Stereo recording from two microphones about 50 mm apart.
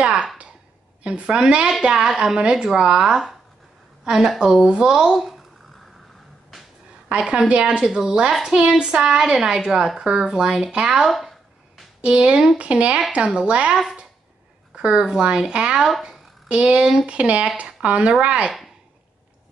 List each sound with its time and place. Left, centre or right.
0.0 s a sound: centre
1.2 s a woman's voice: centre
7.2 s speech: centre
11.1 s a sound: centre
12.0 s speech: right
14.8 s speech: centre
16.4 s speech: right